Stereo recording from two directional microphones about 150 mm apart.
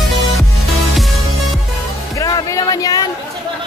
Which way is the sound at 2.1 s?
25° left (ahead or behind).